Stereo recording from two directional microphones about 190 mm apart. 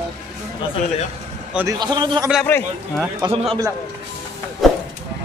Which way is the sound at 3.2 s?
20° right (ahead or behind).